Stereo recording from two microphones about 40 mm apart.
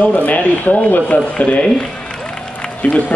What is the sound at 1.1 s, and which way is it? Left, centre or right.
Speech, left.